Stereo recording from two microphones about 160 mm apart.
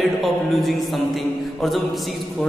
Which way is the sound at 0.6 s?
Centre (ahead or behind).